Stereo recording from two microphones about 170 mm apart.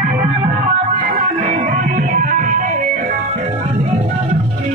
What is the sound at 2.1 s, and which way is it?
Music, 50° right (ahead or behind).